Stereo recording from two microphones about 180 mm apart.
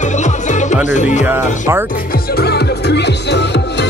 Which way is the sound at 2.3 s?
65° left (ahead or behind).